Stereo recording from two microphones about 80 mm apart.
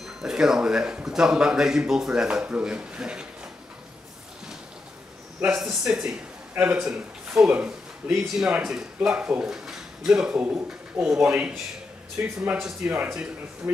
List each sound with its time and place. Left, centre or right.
0.0 s a man's voice: centre
5.6 s a man's voice: centre
12.2 s speech: right
12.5 s a man's voice: centre
12.9 s speech: right